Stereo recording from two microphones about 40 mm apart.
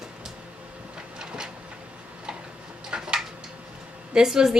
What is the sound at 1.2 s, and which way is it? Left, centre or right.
Train, centre.